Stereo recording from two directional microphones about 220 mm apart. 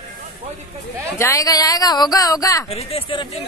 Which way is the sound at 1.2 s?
15° left (ahead or behind).